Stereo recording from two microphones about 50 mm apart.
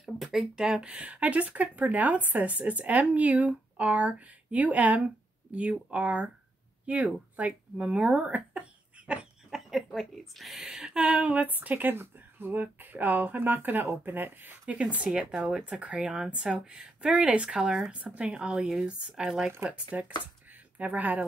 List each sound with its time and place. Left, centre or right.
0.0 s a sound: centre
0.6 s speech: centre
9.5 s speech: centre
11.1 s speech: right
11.9 s speech: right
15.1 s speech: centre
19.7 s speech: right